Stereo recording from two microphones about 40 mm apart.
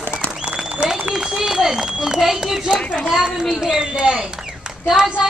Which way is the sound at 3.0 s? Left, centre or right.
Right.